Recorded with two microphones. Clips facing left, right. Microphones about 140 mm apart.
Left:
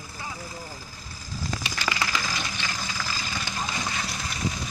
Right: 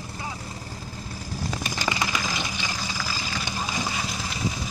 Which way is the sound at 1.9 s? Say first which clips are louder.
Right 1 dB; 20° right (ahead or behind).